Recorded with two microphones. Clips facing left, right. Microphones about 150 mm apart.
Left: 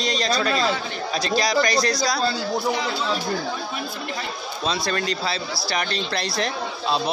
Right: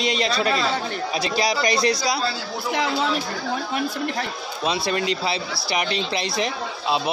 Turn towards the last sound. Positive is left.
turn(degrees=-15)  # may be behind; listen again after turning